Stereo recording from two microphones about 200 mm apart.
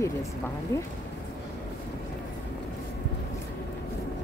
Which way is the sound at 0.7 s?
15° left (ahead or behind).